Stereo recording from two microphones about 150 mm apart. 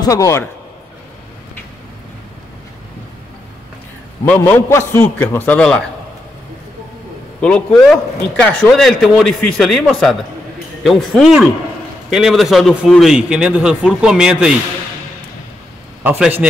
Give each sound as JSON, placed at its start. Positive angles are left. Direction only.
{"t": 0.0, "sound": "a man's voice", "side_deg": 20}
{"t": 4.2, "sound": "a man's voice", "side_deg": 15}
{"t": 7.4, "sound": "a man's voice", "side_deg": 5}
{"t": 16.0, "sound": "a man's voice", "side_deg": -15}